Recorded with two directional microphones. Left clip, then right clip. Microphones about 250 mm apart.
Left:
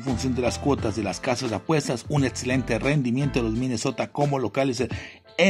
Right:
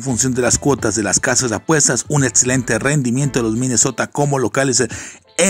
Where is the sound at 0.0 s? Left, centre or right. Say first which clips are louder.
Right 8 dB; centre.